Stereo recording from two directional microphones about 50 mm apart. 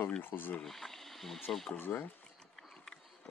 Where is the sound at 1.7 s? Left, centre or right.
Left.